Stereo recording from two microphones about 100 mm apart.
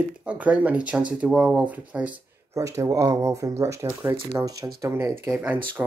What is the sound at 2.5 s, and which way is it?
Speech, 30° right (ahead or behind).